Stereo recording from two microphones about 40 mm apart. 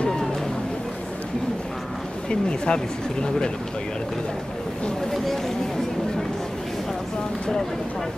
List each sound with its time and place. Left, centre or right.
2.2 s speech: left
5.1 s chatter: centre